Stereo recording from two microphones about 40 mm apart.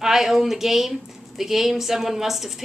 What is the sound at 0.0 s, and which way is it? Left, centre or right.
A woman's voice, centre.